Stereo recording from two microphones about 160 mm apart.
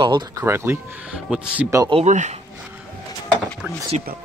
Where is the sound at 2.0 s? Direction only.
50° right (ahead or behind).